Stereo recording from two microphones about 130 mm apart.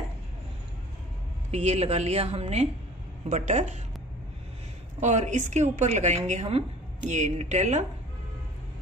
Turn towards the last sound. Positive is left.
turn(degrees=-65)  # may be behind; listen again after turning